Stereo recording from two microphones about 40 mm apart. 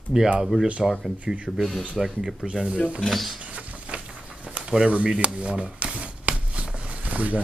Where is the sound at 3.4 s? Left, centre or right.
Right.